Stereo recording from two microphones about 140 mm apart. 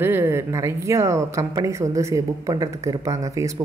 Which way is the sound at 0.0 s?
15° right (ahead or behind).